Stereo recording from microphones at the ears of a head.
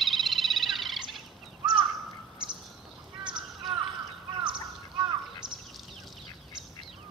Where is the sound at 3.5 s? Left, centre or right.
Right.